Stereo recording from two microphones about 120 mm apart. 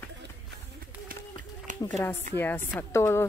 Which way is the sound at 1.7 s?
90° right.